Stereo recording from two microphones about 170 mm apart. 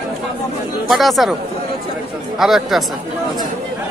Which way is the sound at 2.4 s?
Centre (ahead or behind).